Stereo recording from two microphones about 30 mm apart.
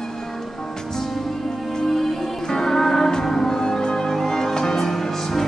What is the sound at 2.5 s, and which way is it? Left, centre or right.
Music, centre.